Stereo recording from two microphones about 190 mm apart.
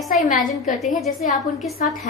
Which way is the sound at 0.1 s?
40° left (ahead or behind).